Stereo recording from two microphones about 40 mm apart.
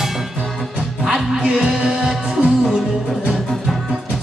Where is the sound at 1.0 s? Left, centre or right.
Centre.